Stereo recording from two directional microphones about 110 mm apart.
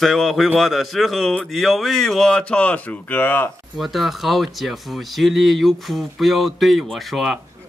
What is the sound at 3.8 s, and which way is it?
Speech, centre (ahead or behind).